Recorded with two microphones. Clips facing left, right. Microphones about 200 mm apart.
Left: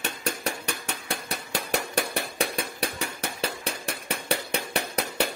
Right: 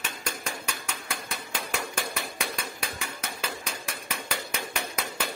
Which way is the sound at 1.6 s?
35° left (ahead or behind).